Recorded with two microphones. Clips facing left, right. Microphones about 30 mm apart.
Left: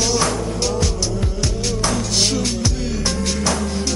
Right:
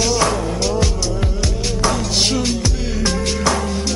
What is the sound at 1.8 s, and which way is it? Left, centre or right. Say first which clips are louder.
Music: right 2 dB; centre.